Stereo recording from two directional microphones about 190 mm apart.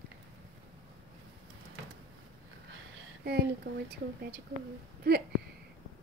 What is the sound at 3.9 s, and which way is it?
A woman's voice, 60° right (ahead or behind).